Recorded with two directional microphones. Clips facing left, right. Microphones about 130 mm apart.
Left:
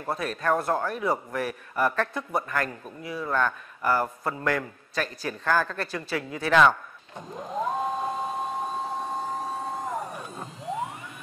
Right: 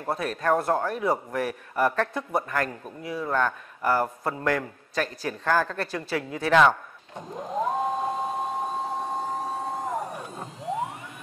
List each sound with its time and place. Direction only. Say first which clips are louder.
0.0 s speech: right 1 dB; 40° right (ahead or behind)
8.9 s vehicle: right 1 dB; 25° right (ahead or behind); by 10.9 s 40° right (ahead or behind)